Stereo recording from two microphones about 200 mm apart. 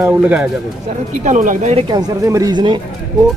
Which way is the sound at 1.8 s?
20° right (ahead or behind).